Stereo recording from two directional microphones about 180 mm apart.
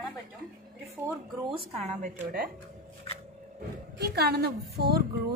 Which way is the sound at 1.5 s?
35° right (ahead or behind).